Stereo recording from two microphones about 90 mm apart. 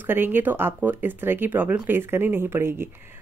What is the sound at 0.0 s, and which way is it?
A woman's voice, 20° right (ahead or behind).